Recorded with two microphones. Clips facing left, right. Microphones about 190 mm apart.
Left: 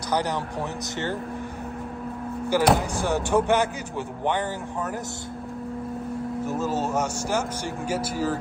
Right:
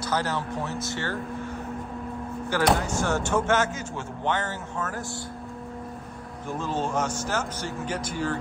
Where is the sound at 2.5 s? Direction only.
10° left (ahead or behind).